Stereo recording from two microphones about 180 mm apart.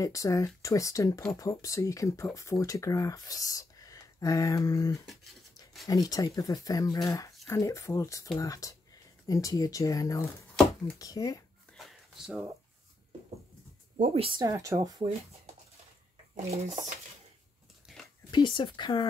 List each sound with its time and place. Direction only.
0.0 s speech: 20° left (ahead or behind)
11.7 s a sound: centre (ahead or behind)
14.1 s speech: 30° right (ahead or behind)
14.4 s speech: 15° right (ahead or behind)
16.4 s speech: 45° right (ahead or behind)
17.9 s a sound: centre (ahead or behind)
18.3 s speech: 25° left (ahead or behind)